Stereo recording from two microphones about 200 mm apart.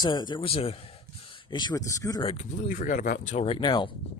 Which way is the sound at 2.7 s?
45° left (ahead or behind).